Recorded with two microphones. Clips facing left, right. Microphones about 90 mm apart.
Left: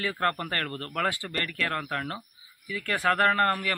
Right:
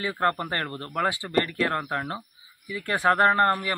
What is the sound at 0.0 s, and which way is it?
A man's voice, 20° right (ahead or behind).